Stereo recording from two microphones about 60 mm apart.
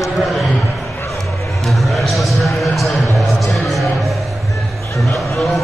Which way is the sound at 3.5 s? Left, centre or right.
Centre.